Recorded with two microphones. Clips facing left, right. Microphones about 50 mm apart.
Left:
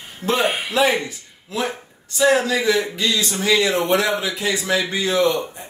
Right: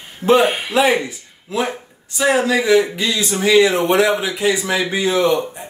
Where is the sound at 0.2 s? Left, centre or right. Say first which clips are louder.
Right 7 dB; centre.